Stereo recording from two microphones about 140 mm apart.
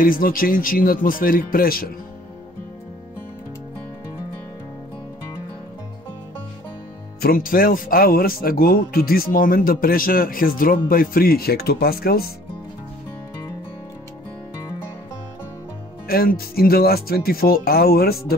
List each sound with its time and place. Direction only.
0.0 s speech: 85° left
7.2 s speech: 90° left
16.1 s speech: 90° left